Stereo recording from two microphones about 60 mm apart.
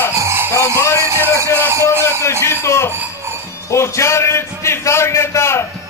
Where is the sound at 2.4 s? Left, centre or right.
Left.